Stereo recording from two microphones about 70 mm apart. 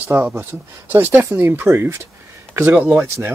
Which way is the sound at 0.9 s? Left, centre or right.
Right.